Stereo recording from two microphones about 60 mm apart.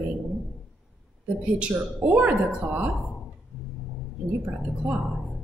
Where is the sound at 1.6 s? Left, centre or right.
Centre.